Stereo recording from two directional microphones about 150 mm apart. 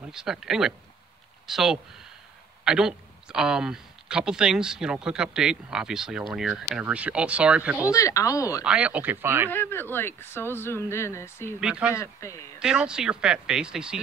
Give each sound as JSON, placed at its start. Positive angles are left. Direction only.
{"t": 0.1, "sound": "speech", "side_deg": -5}
{"t": 7.9, "sound": "speech", "side_deg": 20}
{"t": 8.6, "sound": "speech", "side_deg": -10}
{"t": 9.5, "sound": "speech", "side_deg": 15}
{"t": 11.6, "sound": "speech", "side_deg": -5}
{"t": 11.9, "sound": "speech", "side_deg": 20}
{"t": 12.5, "sound": "speech", "side_deg": -5}